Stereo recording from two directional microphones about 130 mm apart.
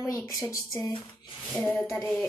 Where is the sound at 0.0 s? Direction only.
25° left (ahead or behind).